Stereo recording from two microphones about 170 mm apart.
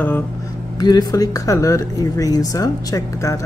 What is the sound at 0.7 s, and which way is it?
Speech, 25° left (ahead or behind).